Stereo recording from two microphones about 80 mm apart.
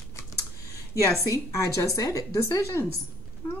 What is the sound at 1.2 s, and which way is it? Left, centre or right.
Speech, left.